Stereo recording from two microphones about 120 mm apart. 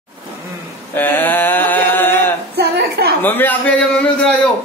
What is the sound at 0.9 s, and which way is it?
Mantra, 15° left (ahead or behind).